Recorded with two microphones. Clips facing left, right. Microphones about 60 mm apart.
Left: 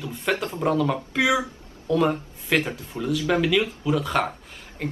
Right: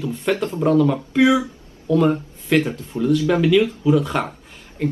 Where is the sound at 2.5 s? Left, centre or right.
Left.